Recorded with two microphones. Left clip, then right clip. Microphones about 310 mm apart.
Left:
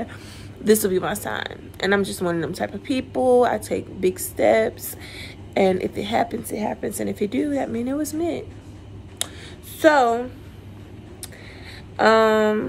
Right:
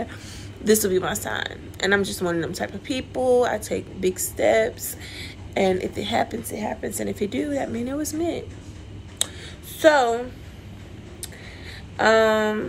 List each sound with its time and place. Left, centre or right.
0.7 s speech: centre
9.2 s a sound: centre
9.8 s speech: centre
12.0 s speech: centre